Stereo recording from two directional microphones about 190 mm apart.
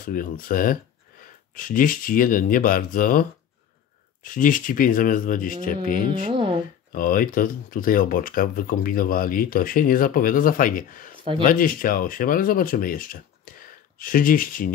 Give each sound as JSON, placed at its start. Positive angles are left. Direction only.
{"t": 0.0, "sound": "speech", "side_deg": 45}
{"t": 6.2, "sound": "speech", "side_deg": -25}
{"t": 6.9, "sound": "speech", "side_deg": 50}